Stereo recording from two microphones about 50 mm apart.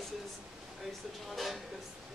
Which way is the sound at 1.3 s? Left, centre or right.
Centre.